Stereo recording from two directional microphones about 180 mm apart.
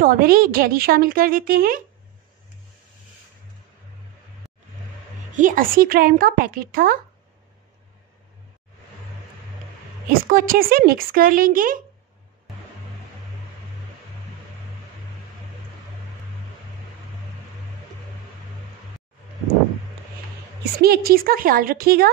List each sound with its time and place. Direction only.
0.0 s speech: 50° right (ahead or behind)
5.3 s speech: 50° right (ahead or behind)
10.0 s speech: 50° right (ahead or behind)
20.8 s a woman's voice: 60° right (ahead or behind)